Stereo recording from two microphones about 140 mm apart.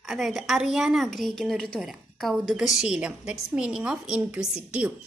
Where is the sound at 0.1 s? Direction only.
Centre (ahead or behind).